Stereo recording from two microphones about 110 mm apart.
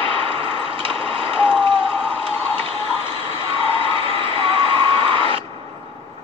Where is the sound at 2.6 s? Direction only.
55° right (ahead or behind).